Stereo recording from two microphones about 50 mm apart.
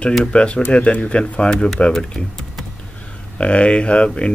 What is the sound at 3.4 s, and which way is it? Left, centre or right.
Speech, left.